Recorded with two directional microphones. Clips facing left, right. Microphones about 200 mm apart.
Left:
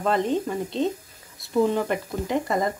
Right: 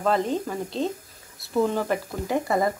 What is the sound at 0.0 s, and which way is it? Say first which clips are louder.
Speech: left 1 dB; centre (ahead or behind).